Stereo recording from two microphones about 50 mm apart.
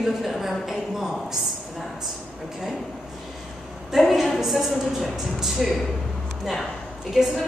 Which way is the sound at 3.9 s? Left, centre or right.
Centre.